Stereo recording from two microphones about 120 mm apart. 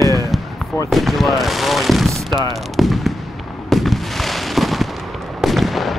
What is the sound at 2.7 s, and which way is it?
Speech, centre (ahead or behind).